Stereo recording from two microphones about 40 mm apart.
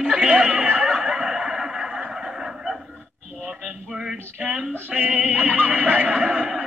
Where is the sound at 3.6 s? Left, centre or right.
Centre.